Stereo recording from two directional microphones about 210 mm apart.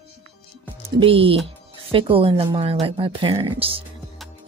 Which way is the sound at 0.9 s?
25° right (ahead or behind).